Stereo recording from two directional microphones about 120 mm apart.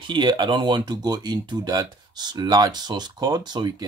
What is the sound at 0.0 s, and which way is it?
Speech, 40° right (ahead or behind).